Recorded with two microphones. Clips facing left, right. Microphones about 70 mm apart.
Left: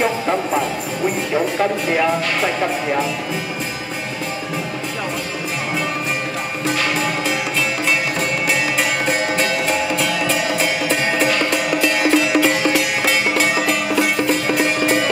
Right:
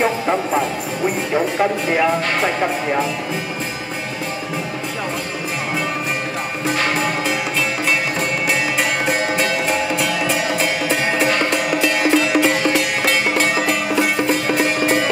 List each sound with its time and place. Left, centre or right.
0.0 s music: right
2.2 s speech: right
6.7 s music: right
7.2 s music: centre
12.4 s music: centre
14.2 s music: right